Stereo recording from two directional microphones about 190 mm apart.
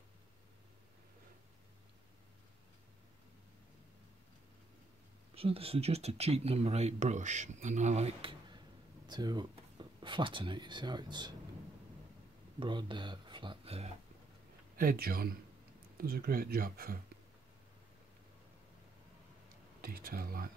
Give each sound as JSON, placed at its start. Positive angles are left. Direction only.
{"t": 5.3, "sound": "speech", "side_deg": -30}
{"t": 12.5, "sound": "speech", "side_deg": -25}
{"t": 14.8, "sound": "speech", "side_deg": -50}
{"t": 19.8, "sound": "speech", "side_deg": -50}